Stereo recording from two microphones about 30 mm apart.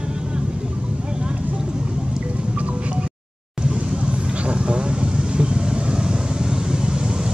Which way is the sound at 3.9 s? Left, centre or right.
Right.